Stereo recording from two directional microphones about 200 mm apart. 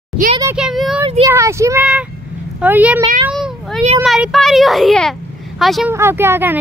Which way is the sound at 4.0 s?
Centre (ahead or behind).